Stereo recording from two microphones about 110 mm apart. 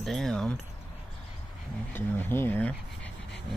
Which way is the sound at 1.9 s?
15° left (ahead or behind).